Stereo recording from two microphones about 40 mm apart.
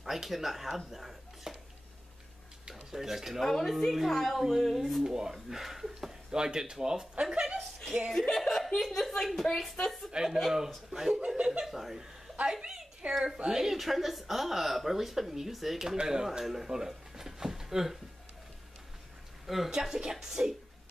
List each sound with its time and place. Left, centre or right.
0.0 s speech: centre
2.7 s speech: centre
3.4 s speech: centre
5.0 s speech: centre
8.1 s speech: centre
10.9 s speech: centre
11.1 s speech: right
11.6 s speech: centre
12.6 s a sound: centre
13.4 s speech: centre
16.6 s a sound: centre
19.4 s speech: centre